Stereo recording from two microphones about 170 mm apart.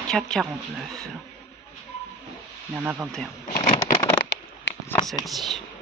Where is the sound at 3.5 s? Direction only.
55° left (ahead or behind).